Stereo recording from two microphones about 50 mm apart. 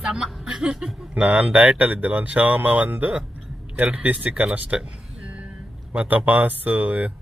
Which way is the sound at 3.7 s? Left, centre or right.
Right.